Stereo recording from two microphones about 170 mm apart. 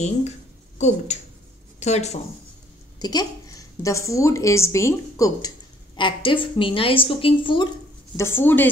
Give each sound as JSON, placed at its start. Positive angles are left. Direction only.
{"t": 0.7, "sound": "speech", "side_deg": 40}
{"t": 3.0, "sound": "a woman's voice", "side_deg": 25}
{"t": 5.9, "sound": "speech", "side_deg": 30}
{"t": 8.2, "sound": "a woman's voice", "side_deg": 15}